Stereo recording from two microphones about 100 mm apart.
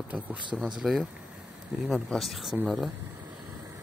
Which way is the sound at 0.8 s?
Centre (ahead or behind).